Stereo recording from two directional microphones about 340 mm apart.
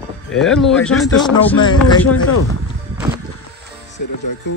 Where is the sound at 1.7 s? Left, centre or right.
Left.